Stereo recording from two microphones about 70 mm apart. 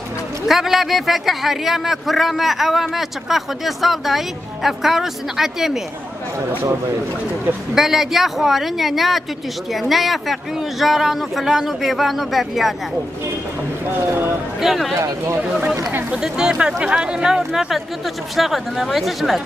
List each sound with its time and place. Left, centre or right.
0.5 s a man's voice: centre
7.7 s a man's voice: centre
13.9 s speech: right
14.6 s a man's voice: centre
15.0 s speech: right
15.4 s a man's voice: centre